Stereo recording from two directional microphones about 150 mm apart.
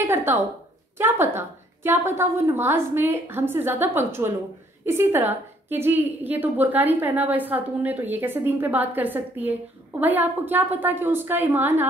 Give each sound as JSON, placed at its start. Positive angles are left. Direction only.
{"t": 0.0, "sound": "a woman's voice", "side_deg": -15}